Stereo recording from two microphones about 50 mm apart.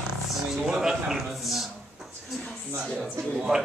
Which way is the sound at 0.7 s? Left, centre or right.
Centre.